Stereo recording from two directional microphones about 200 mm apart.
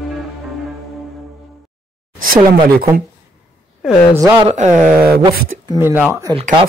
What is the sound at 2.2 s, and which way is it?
Speech, 45° right (ahead or behind).